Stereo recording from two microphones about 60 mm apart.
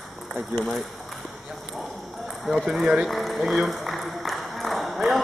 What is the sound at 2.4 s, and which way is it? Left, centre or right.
Speech, centre.